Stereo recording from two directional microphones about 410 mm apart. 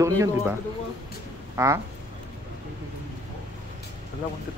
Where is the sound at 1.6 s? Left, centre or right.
Centre.